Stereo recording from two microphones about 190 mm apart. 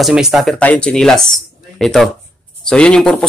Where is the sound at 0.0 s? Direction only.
Centre (ahead or behind).